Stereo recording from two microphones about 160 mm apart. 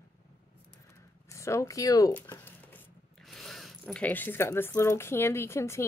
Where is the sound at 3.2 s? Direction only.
Centre (ahead or behind).